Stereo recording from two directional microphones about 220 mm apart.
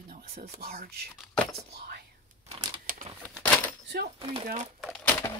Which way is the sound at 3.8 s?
45° right (ahead or behind).